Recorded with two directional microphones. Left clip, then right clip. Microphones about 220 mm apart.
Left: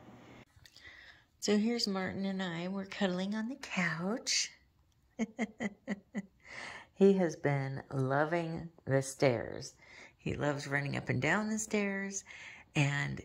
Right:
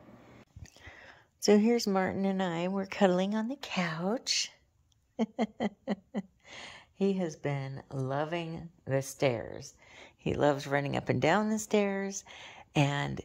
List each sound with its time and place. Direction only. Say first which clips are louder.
1.4 s speech: right 7 dB; 20° right (ahead or behind)
2.7 s speech: right 6 dB; 25° right (ahead or behind)
3.2 s speech: right 7 dB; 15° right (ahead or behind)
3.9 s speech: right 4 dB; 10° right (ahead or behind)
5.1 s a sound: right 6 dB; 25° right (ahead or behind)
6.6 s a sound: left 5 dB; 10° right (ahead or behind)
7.2 s speech: left 2 dB; 15° right (ahead or behind)
11.8 s speech: right 5 dB; 15° right (ahead or behind)
12.3 s speech: right 1 dB; 25° right (ahead or behind)